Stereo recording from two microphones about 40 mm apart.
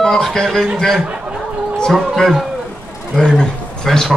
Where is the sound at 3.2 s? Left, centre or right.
Centre.